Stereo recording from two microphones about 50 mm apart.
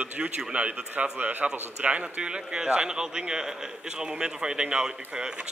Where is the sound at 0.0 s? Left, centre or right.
Right.